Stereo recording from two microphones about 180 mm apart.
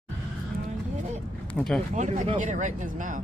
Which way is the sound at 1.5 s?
5° left (ahead or behind).